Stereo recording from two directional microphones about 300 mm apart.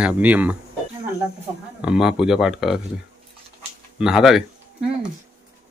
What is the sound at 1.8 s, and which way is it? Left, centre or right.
Speech, centre.